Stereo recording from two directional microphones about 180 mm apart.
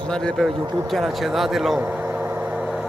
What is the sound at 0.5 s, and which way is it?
Speech, 25° right (ahead or behind).